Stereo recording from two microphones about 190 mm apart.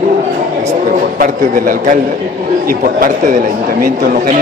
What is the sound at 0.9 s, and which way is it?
A man's voice, 50° right (ahead or behind).